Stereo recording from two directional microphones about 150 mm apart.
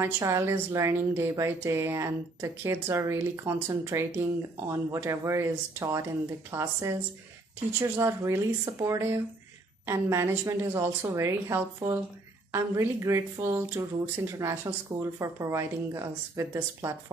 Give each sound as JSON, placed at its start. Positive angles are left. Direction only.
{"t": 0.0, "sound": "speech", "side_deg": -20}